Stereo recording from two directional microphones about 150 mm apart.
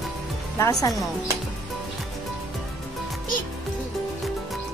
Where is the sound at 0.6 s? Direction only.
25° left (ahead or behind).